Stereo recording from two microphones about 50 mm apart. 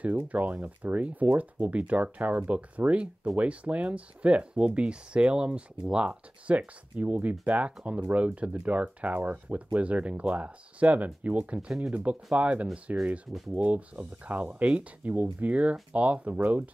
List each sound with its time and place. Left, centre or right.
0.3 s speech: right